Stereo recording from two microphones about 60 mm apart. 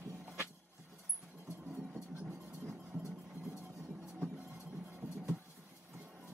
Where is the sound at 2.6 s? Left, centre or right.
Right.